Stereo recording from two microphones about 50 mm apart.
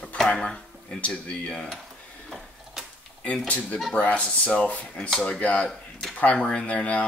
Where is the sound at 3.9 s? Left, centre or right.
Left.